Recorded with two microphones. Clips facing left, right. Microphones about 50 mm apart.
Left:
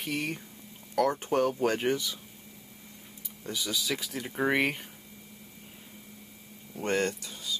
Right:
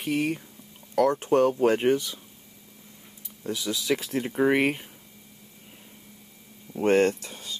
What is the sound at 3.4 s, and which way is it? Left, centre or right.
Speech, centre.